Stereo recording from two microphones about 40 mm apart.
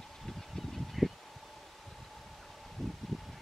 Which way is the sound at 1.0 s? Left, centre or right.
Centre.